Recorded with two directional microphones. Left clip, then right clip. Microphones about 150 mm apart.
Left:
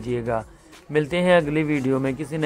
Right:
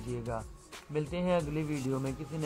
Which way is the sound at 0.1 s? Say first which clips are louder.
Left 13 dB; 15° left (ahead or behind).